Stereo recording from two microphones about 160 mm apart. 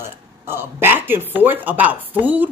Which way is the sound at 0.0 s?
15° right (ahead or behind).